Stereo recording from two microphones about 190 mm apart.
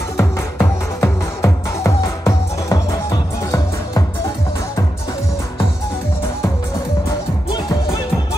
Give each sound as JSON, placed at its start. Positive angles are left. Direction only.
{"t": 0.2, "sound": "music", "side_deg": 15}